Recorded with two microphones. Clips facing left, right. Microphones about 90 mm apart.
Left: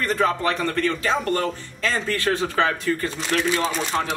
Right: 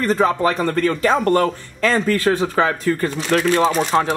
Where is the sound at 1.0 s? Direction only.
50° right (ahead or behind).